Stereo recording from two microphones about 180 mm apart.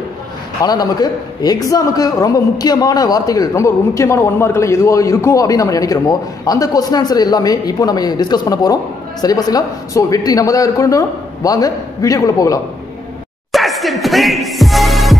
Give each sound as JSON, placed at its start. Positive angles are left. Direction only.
{"t": 0.7, "sound": "a man's voice", "side_deg": 20}
{"t": 13.5, "sound": "music", "side_deg": 0}